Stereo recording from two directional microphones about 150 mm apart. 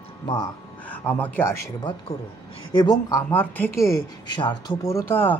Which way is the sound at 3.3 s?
10° left (ahead or behind).